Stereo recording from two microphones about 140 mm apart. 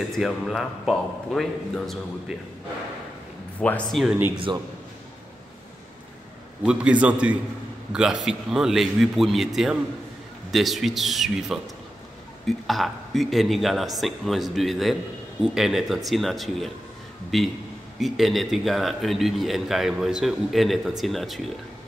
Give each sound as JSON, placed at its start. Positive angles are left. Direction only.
{"t": 0.1, "sound": "a man's voice", "side_deg": 0}
{"t": 3.5, "sound": "speech", "side_deg": 10}
{"t": 4.5, "sound": "a man's voice", "side_deg": -35}
{"t": 6.6, "sound": "a man's voice", "side_deg": -5}